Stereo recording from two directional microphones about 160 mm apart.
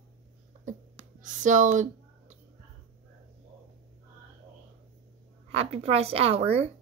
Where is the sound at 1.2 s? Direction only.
50° right (ahead or behind).